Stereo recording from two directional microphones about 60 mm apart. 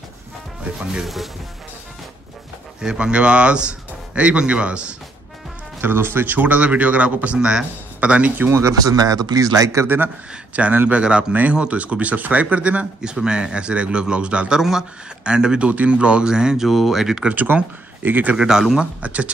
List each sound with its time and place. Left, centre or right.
1.0 s speech: centre
2.8 s speech: centre
5.8 s speech: right
7.3 s speech: centre
8.0 s speech: right
8.5 s speech: right
8.8 s a man's voice: right
9.8 s speech: right
14.6 s speech: centre
17.2 s speech: right
18.3 s speech: centre
18.9 s speech: right